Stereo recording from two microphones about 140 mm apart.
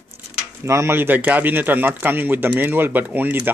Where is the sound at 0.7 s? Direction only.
20° right (ahead or behind).